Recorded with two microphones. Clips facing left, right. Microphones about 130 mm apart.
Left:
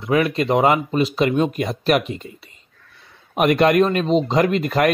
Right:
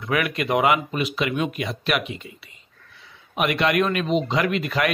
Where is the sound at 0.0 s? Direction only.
30° left (ahead or behind).